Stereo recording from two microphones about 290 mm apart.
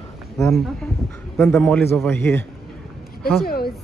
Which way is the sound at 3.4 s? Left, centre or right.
Left.